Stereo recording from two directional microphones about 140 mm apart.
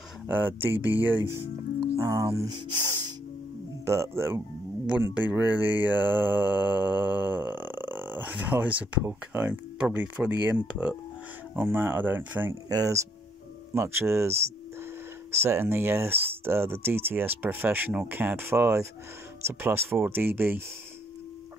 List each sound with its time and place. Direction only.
0.3 s speech: 15° right (ahead or behind)
12.6 s speech: 25° right (ahead or behind)
15.4 s speech: 15° right (ahead or behind)